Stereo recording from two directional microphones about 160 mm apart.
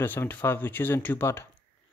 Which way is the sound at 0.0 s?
10° left (ahead or behind).